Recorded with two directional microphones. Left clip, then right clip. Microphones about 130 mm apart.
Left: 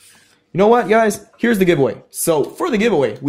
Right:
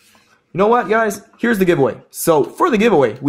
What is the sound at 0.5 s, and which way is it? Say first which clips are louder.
Speech: left 1 dB; 25° left (ahead or behind).